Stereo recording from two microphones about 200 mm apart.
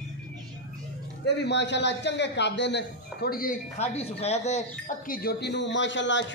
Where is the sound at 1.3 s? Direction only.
60° left (ahead or behind).